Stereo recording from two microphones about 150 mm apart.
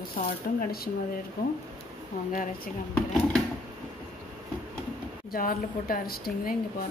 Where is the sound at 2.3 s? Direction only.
65° left (ahead or behind).